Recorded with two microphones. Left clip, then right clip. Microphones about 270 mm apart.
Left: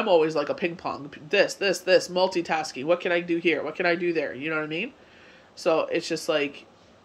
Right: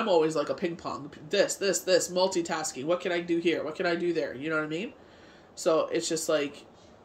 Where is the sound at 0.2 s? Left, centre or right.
Centre.